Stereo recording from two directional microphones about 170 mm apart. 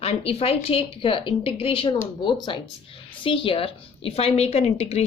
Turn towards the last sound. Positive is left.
turn(degrees=40)  # may be behind; listen again after turning